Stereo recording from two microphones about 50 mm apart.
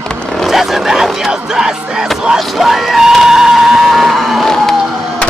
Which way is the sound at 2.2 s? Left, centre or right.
Centre.